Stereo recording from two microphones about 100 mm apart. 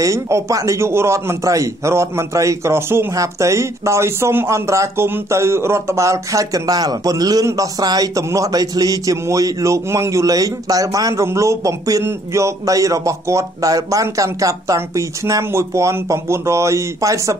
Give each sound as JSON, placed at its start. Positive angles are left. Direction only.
{"t": 0.0, "sound": "a man's voice", "side_deg": -30}